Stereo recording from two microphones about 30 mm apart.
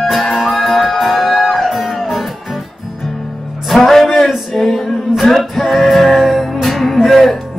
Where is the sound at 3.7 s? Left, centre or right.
Centre.